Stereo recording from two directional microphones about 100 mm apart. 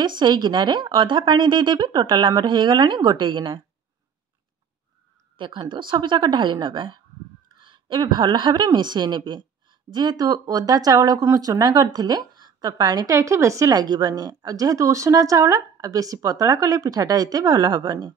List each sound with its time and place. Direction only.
0.0 s speech: 50° right (ahead or behind)
5.4 s a woman's voice: 50° right (ahead or behind)